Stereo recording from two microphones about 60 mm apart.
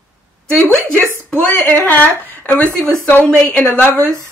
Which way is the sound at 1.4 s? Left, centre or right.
Left.